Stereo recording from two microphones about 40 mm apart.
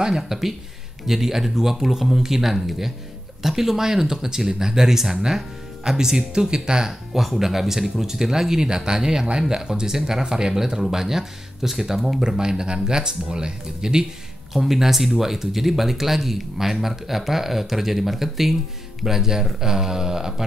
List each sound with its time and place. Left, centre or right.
0.1 s speech: centre
7.2 s speech: centre
14.5 s speech: centre